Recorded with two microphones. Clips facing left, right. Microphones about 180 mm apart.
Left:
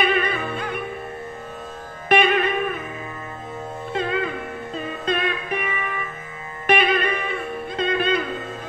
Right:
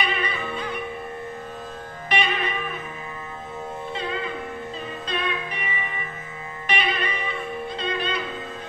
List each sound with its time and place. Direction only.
0.0 s music: 50° left (ahead or behind)
2.0 s music: 50° left (ahead or behind)
3.9 s music: 50° left (ahead or behind)